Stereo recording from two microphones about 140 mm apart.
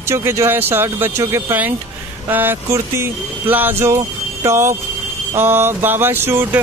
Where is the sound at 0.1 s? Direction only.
20° right (ahead or behind).